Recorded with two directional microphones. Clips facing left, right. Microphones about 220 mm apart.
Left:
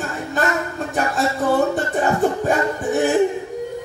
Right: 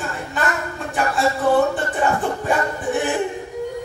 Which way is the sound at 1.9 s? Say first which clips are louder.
Left 5 dB; 40° left (ahead or behind).